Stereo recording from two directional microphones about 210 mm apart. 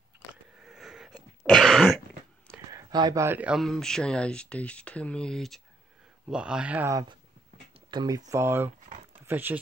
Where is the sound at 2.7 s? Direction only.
20° right (ahead or behind).